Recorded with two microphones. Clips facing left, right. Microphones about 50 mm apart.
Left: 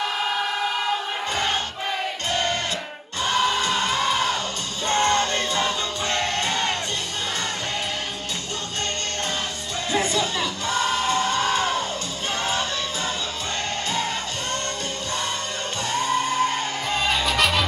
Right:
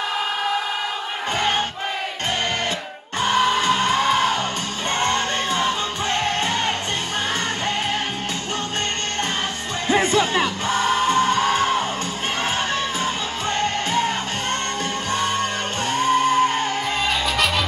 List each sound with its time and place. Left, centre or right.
3.2 s music: right
9.8 s music: right
15.9 s music: right
17.0 s music: centre